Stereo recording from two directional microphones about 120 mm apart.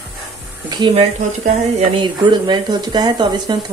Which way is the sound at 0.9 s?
55° right (ahead or behind).